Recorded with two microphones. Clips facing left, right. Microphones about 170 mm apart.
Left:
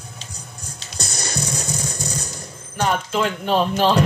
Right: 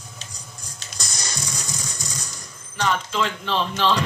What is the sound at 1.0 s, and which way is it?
Music, 55° left (ahead or behind).